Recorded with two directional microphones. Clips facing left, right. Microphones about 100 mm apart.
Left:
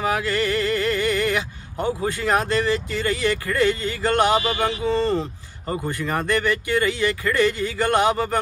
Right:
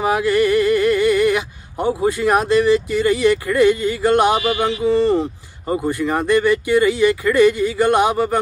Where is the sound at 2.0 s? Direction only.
15° right (ahead or behind).